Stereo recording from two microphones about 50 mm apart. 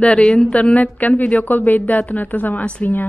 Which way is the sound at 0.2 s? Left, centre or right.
Left.